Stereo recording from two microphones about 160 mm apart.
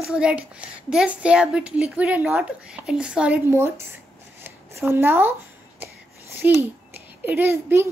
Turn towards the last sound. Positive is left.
turn(degrees=-15)  # may be behind; listen again after turning